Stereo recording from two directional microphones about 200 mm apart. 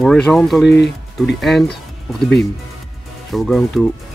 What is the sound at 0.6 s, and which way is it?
Speech, 60° left (ahead or behind).